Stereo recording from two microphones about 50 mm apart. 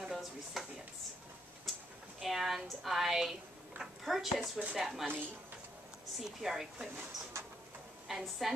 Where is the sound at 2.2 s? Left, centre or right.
Centre.